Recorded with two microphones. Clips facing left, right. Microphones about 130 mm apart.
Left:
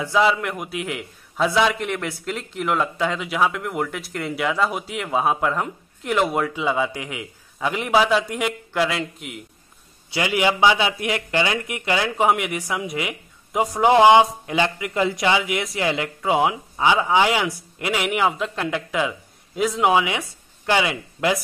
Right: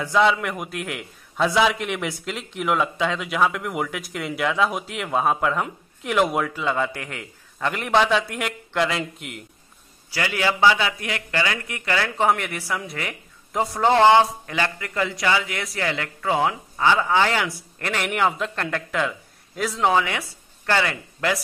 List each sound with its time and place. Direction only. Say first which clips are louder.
0.0 s a man's voice: even; 5° left (ahead or behind)
10.1 s a man's voice: left 3 dB; 20° left (ahead or behind)